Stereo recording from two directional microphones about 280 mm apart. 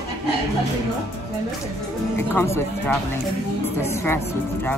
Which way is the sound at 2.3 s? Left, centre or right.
Centre.